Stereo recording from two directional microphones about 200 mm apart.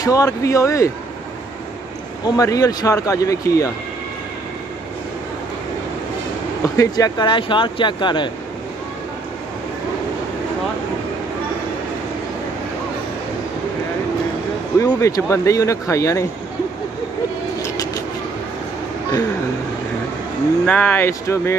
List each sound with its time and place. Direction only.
0.0 s speech: 15° left (ahead or behind)
2.2 s speech: 15° left (ahead or behind)
6.6 s speech: 15° left (ahead or behind)
14.8 s speech: 15° left (ahead or behind)
17.6 s vehicle: 15° left (ahead or behind)
20.6 s speech: 5° left (ahead or behind)